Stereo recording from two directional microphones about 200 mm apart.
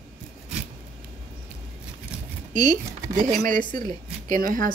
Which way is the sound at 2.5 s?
40° right (ahead or behind).